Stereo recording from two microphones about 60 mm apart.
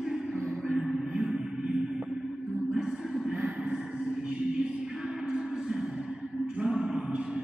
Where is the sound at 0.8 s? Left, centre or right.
Centre.